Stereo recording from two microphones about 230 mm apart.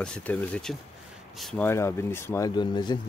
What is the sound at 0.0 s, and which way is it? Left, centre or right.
Speech, centre.